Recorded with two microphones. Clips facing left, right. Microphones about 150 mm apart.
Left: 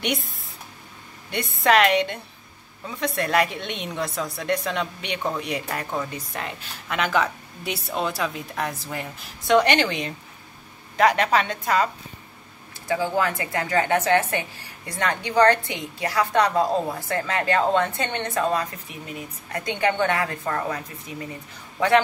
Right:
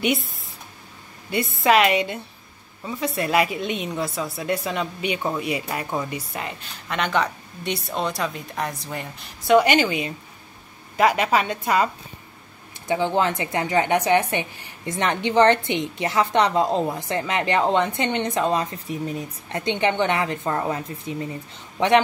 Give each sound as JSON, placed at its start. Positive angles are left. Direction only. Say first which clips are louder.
{"t": 0.0, "sound": "a woman's voice", "louder": "right 4 dB", "side_deg": 0}
{"t": 12.8, "sound": "a woman's voice", "louder": "right 2 dB", "side_deg": -25}
{"t": 18.9, "sound": "speech", "louder": "right 10 dB", "side_deg": -35}
{"t": 19.5, "sound": "a woman's voice", "louder": "right 2 dB", "side_deg": -25}
{"t": 21.7, "sound": "a man's voice", "louder": "right 1 dB", "side_deg": -20}